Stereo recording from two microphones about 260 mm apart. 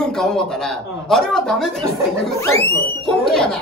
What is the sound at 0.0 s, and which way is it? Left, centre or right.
A man's voice, centre.